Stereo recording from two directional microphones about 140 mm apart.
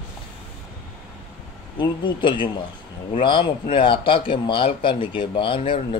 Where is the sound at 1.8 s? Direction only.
35° left (ahead or behind).